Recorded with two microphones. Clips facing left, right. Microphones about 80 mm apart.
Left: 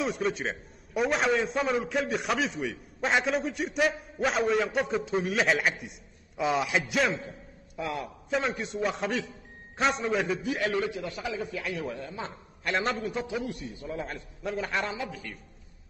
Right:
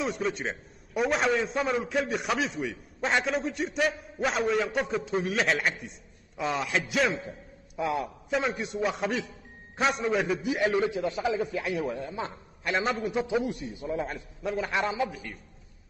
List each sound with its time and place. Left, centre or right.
0.0 s a man's voice: centre
10.6 s a man's voice: centre
14.0 s a man's voice: centre
14.9 s a man's voice: centre